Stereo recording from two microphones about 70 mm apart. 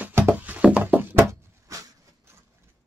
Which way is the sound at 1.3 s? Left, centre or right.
Right.